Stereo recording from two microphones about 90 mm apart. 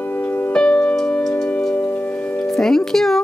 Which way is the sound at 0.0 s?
20° left (ahead or behind).